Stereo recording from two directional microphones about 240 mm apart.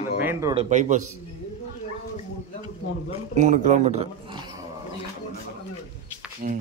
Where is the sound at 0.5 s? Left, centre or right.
Right.